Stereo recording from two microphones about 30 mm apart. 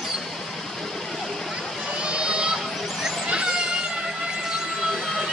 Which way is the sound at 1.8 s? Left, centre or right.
Right.